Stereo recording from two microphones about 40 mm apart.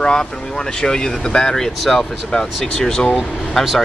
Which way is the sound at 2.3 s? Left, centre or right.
Centre.